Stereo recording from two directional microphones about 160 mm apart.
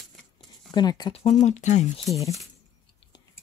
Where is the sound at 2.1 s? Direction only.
20° left (ahead or behind).